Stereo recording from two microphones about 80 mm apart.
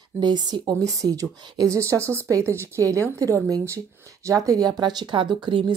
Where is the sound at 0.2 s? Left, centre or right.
Right.